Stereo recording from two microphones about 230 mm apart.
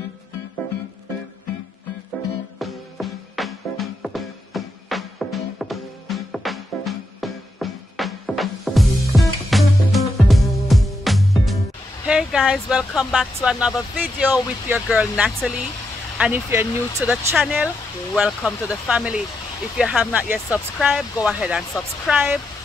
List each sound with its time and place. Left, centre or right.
2.6 s music: centre
12.1 s speech: centre